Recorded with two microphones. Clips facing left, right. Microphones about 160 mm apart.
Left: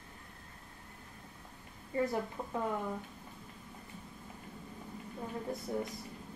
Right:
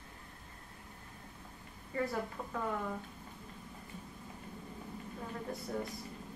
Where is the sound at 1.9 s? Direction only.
20° left (ahead or behind).